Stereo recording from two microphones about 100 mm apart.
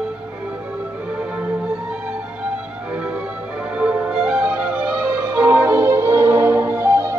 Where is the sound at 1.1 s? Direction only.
15° right (ahead or behind).